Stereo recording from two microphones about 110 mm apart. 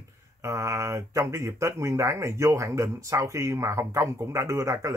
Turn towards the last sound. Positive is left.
turn(degrees=-25)  # may be behind; listen again after turning